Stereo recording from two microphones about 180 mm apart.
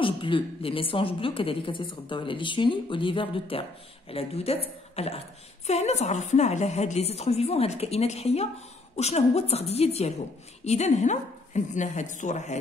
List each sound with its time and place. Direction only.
0.0 s a woman's voice: 30° left (ahead or behind)
4.9 s beatboxing: 35° left (ahead or behind)
5.7 s a woman's voice: 35° left (ahead or behind)